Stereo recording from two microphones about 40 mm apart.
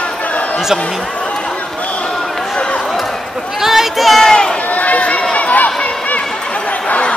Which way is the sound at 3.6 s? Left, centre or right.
Centre.